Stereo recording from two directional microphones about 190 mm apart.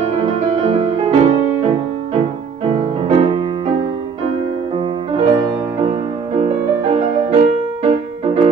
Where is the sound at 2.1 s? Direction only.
30° right (ahead or behind).